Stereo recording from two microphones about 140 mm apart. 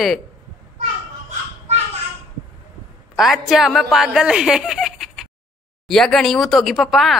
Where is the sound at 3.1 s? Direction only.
Centre (ahead or behind).